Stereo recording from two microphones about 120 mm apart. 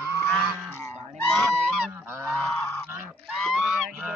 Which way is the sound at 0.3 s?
5° left (ahead or behind).